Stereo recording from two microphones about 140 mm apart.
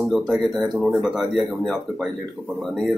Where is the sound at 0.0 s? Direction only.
Centre (ahead or behind).